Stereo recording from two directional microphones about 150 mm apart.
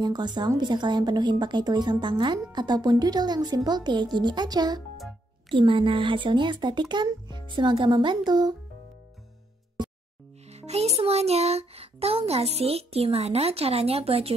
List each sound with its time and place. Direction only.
0.0 s speech: 30° right (ahead or behind)
10.4 s music: 45° right (ahead or behind)